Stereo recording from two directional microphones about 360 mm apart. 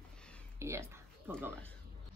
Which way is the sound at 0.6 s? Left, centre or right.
Centre.